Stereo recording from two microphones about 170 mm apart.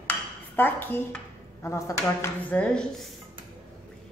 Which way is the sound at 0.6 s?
10° left (ahead or behind).